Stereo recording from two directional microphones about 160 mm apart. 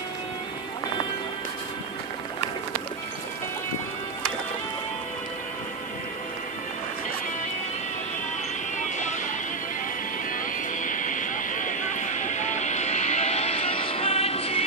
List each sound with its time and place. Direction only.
8.7 s music: 50° left (ahead or behind)
10.3 s music: 55° left (ahead or behind); by 14.6 s 40° left (ahead or behind)